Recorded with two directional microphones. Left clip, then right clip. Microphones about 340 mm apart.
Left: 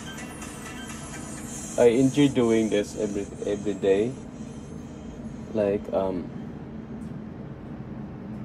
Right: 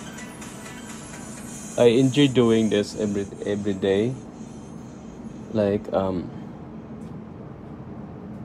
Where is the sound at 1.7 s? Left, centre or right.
Right.